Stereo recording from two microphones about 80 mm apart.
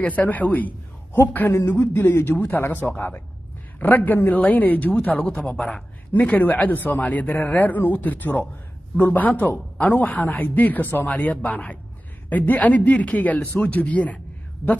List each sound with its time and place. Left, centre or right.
0.0 s speech: centre
1.5 s a sound: left
1.8 s speech: left
2.9 s speech: centre